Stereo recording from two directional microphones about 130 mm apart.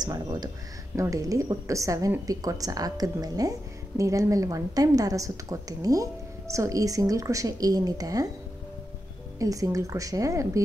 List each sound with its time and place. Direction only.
0.0 s a woman's voice: 30° right (ahead or behind)
9.4 s a woman's voice: 25° right (ahead or behind)